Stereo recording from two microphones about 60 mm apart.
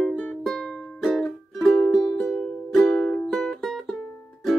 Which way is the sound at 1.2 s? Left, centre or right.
Centre.